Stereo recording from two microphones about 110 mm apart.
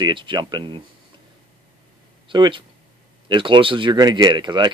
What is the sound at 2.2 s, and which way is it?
Speech, 45° right (ahead or behind).